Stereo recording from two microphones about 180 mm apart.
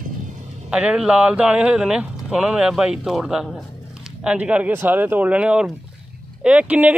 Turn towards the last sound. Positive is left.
turn(degrees=-10)  # may be behind; listen again after turning